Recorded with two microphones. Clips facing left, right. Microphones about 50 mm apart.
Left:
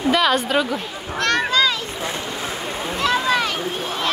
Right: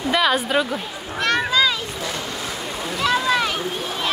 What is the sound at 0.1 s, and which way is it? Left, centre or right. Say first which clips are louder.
Speech: even; centre.